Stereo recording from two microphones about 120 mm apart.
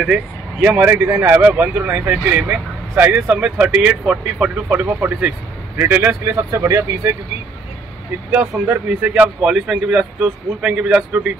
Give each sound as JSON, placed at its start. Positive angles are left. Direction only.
{"t": 0.0, "sound": "speech", "side_deg": -10}
{"t": 8.3, "sound": "speech", "side_deg": -15}